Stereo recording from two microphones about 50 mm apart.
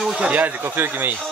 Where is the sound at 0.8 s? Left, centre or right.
Right.